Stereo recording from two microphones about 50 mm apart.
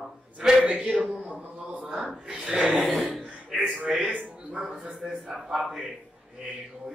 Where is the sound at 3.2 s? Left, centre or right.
Right.